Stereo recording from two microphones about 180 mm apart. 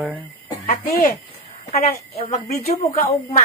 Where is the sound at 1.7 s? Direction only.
35° left (ahead or behind).